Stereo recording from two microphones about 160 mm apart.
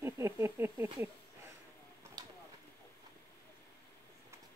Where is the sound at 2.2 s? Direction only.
25° right (ahead or behind).